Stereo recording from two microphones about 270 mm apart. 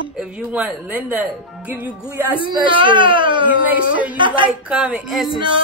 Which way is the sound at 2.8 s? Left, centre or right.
Centre.